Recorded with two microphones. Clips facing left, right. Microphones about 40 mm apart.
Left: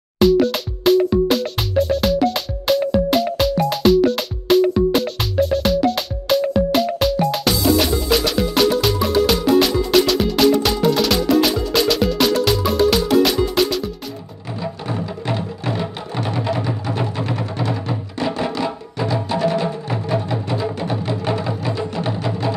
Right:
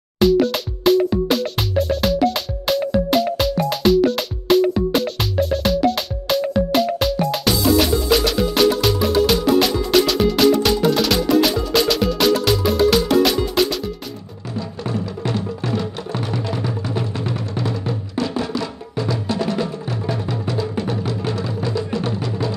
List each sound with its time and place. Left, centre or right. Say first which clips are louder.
0.2 s music: left 1 dB; centre
14.6 s music: even; left